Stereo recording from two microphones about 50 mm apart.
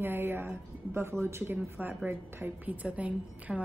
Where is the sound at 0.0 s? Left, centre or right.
Right.